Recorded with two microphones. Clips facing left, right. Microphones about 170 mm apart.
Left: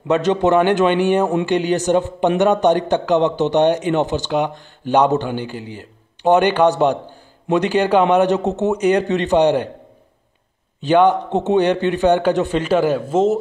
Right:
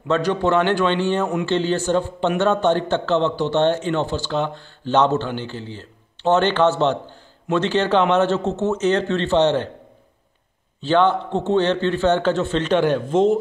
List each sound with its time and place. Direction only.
0.1 s a man's voice: 20° left (ahead or behind)
10.8 s a man's voice: 15° left (ahead or behind)